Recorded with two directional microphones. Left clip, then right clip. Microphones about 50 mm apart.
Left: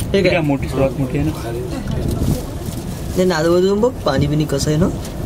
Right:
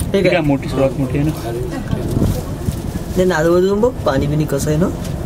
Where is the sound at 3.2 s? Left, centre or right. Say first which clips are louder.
Right 1 dB; left.